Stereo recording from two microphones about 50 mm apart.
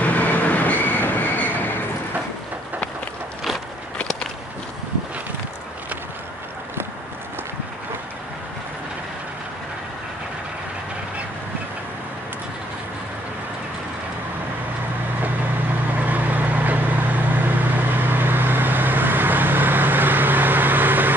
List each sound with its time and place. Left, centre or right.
0.0 s train: left
16.0 s vehicle: right